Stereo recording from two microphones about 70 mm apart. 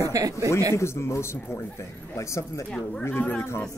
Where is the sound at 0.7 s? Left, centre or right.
Left.